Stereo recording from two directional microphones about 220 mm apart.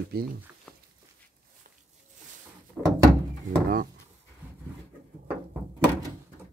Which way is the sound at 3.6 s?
40° right (ahead or behind).